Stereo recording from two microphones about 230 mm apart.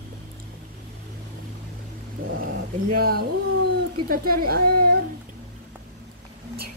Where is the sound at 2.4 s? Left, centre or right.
Right.